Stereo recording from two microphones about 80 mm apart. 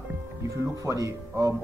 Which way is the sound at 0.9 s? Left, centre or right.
Right.